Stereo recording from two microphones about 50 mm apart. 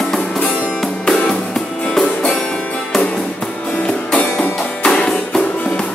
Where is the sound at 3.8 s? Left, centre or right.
Left.